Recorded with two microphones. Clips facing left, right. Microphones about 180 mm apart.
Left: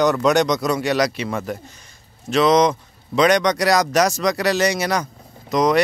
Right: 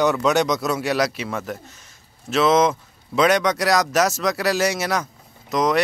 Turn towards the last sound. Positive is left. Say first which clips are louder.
# left 3 dB
turn(degrees=0)  # may be behind; listen again after turning